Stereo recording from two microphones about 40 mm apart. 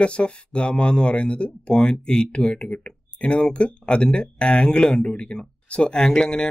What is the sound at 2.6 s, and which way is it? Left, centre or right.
Speech, left.